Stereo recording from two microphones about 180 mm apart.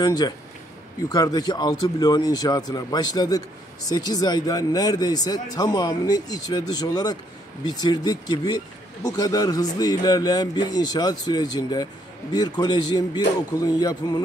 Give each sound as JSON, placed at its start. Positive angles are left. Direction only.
{"t": 1.0, "sound": "speech", "side_deg": 20}